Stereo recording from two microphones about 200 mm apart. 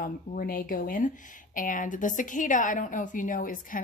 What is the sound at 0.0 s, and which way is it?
Speech, 45° left (ahead or behind).